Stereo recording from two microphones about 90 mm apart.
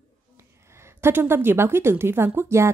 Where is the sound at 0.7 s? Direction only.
30° right (ahead or behind).